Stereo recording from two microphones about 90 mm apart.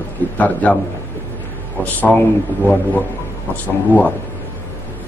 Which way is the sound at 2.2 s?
20° left (ahead or behind).